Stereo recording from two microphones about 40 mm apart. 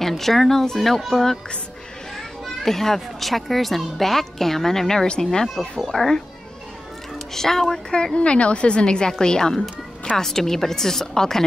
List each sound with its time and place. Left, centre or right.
0.2 s a child's voice: centre
5.5 s a child's voice: centre
7.3 s a child's voice: centre